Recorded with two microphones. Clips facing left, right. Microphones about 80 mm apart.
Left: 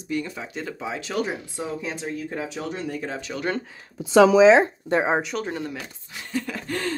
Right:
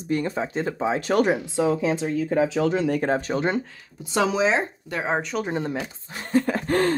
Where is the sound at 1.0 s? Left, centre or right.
Right.